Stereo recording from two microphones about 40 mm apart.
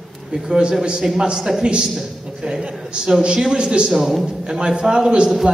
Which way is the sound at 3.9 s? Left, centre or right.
Centre.